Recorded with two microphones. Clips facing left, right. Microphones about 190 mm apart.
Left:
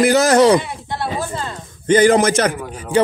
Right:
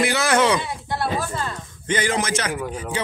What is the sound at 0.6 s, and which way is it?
Speech, 20° left (ahead or behind).